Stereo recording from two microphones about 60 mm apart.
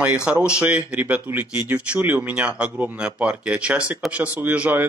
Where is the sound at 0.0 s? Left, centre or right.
Centre.